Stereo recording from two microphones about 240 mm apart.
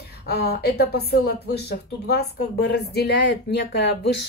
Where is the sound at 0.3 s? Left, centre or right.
Left.